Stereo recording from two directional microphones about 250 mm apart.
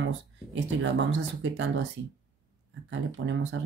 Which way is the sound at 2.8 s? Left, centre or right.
Right.